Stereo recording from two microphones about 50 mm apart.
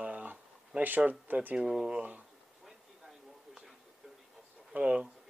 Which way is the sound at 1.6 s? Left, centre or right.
Centre.